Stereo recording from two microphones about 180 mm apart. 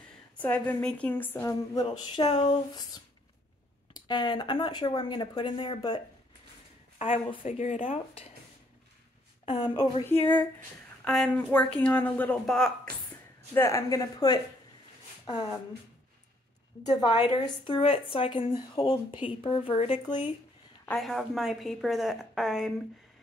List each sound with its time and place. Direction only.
0.4 s a woman's voice: 10° left (ahead or behind)
1.8 s speech: 25° left (ahead or behind)
7.0 s speech: 30° left (ahead or behind)
7.4 s speech: 40° left (ahead or behind)
9.5 s speech: 25° left (ahead or behind)
10.2 s a woman's voice: 10° left (ahead or behind)
13.6 s speech: 15° left (ahead or behind)
17.0 s speech: 25° left (ahead or behind)
20.8 s a woman's voice: centre (ahead or behind)